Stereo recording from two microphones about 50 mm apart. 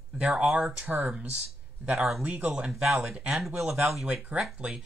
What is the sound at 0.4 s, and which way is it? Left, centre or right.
Speech, centre.